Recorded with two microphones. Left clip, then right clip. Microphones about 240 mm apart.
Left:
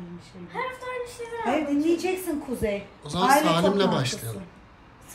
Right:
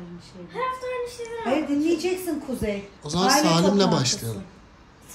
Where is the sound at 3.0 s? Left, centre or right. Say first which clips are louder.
Even; centre.